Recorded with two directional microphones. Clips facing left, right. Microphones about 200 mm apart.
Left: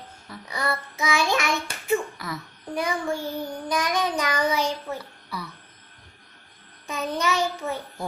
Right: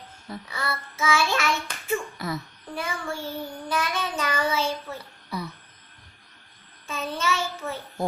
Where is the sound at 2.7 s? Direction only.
15° left (ahead or behind).